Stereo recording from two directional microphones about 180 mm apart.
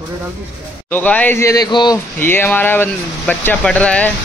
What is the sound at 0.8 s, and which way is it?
Speech, 10° left (ahead or behind).